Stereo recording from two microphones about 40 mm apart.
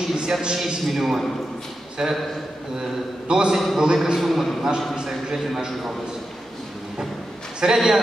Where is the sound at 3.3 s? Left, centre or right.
Right.